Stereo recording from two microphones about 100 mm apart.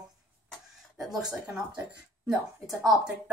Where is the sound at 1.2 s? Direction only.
10° right (ahead or behind).